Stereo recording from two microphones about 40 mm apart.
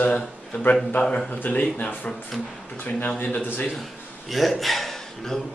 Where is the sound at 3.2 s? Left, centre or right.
Left.